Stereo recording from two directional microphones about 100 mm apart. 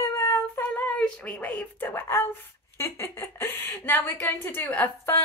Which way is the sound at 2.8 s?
25° left (ahead or behind).